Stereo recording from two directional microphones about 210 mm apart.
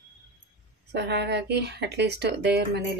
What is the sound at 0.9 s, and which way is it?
Speech, 55° right (ahead or behind).